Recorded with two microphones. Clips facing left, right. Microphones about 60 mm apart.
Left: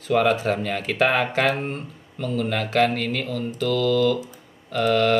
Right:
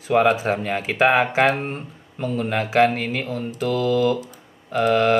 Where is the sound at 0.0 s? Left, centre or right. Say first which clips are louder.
Right 2 dB; centre.